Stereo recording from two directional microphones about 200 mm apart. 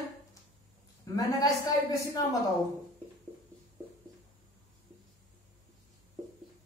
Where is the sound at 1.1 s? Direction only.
15° left (ahead or behind).